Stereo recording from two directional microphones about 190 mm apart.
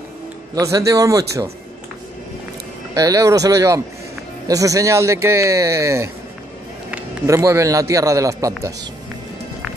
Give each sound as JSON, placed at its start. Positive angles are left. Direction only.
{"t": 0.6, "sound": "a man's voice", "side_deg": -15}
{"t": 3.0, "sound": "a man's voice", "side_deg": -15}